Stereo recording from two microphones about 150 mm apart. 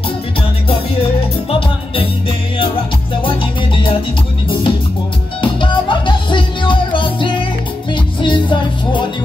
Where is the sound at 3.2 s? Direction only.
35° left (ahead or behind).